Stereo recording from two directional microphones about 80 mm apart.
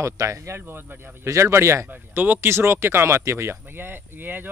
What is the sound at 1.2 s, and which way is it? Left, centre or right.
Speech, right.